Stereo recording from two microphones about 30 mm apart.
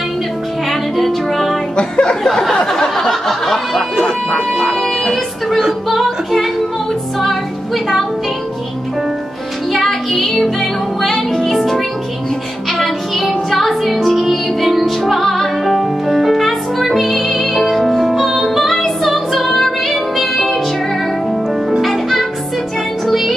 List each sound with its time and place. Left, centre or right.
0.7 s music: centre
1.8 s a sound: left
3.0 s a sound: centre
4.8 s music: centre
9.7 s music: centre
12.7 s music: centre